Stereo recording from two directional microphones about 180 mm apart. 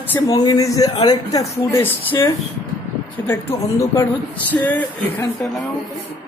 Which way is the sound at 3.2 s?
15° left (ahead or behind).